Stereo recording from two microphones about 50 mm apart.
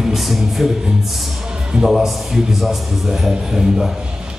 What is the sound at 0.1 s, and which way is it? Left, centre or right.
Music, centre.